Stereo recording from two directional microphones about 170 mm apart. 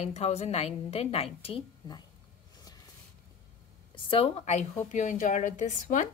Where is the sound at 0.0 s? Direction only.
40° left (ahead or behind).